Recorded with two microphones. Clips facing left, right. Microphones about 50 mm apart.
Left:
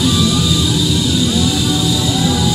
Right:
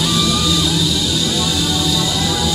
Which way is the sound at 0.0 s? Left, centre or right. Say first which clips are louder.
Left 2 dB; centre.